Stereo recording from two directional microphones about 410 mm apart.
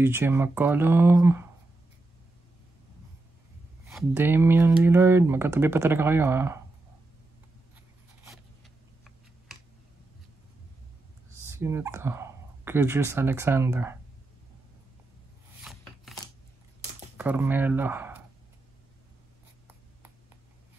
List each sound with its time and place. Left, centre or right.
0.0 s speech: centre
3.8 s speech: centre
11.4 s speech: centre
15.6 s a sound: centre
17.2 s speech: centre